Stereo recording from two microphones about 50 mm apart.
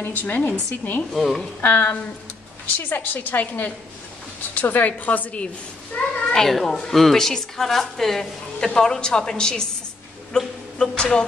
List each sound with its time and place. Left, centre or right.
0.0 s a woman's voice: left
1.1 s a woman's voice: centre
1.6 s a woman's voice: left
6.3 s a woman's voice: centre
10.3 s a sound: centre